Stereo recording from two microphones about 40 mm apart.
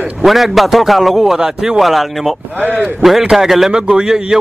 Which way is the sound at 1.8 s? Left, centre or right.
Centre.